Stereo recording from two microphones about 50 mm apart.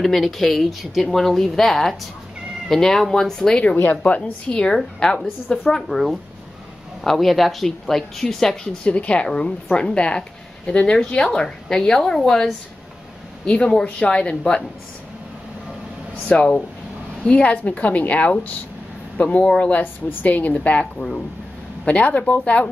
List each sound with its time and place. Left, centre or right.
0.0 s speech: centre
3.7 s a woman's voice: left
4.0 s a woman's voice: left
5.9 s speech: centre
8.8 s a woman's voice: left
16.3 s speech: centre
17.2 s a woman's voice: left
19.8 s a woman's voice: left
21.8 s a woman's voice: left